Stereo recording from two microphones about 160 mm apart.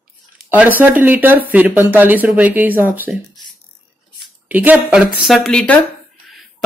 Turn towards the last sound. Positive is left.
turn(degrees=5)  # may be behind; listen again after turning